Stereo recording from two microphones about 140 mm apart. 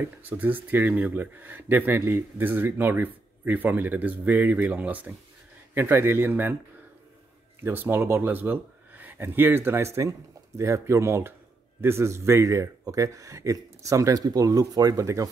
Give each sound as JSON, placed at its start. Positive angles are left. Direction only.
{"t": 0.2, "sound": "speech", "side_deg": -10}
{"t": 7.6, "sound": "speech", "side_deg": -15}